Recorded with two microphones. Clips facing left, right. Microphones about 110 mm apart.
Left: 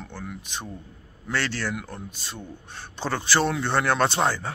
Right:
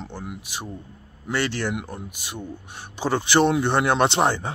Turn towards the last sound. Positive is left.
turn(degrees=-20)  # may be behind; listen again after turning